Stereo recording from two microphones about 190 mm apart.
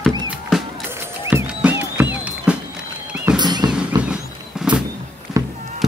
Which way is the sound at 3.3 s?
20° right (ahead or behind).